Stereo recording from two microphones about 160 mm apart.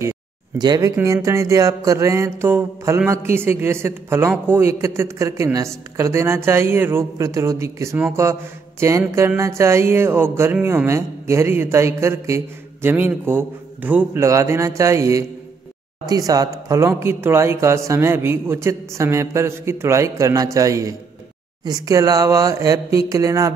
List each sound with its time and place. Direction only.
0.6 s mantra: 25° right (ahead or behind)
3.1 s speech: 15° right (ahead or behind)
16.1 s mantra: 20° right (ahead or behind)
16.6 s speech: 20° right (ahead or behind)
20.5 s mantra: 20° right (ahead or behind)